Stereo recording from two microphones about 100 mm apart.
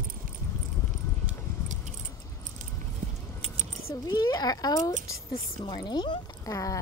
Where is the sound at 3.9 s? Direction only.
40° left (ahead or behind).